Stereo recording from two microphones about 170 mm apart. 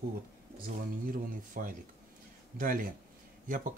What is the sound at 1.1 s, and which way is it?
Speech, 55° right (ahead or behind).